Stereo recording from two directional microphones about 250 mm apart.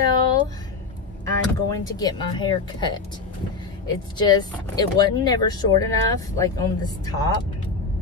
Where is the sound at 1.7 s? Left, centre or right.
Centre.